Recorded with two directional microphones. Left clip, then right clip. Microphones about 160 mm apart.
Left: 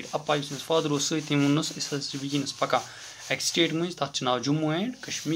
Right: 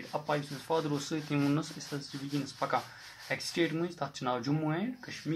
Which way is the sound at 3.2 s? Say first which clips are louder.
Left 7 dB; 20° left (ahead or behind).